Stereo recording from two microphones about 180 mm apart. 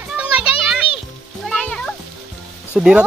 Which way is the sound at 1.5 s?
5° left (ahead or behind).